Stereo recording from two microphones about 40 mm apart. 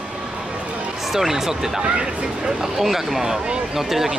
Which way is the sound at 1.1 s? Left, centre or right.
Centre.